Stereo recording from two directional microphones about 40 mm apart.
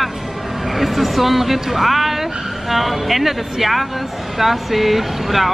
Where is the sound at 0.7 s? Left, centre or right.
Centre.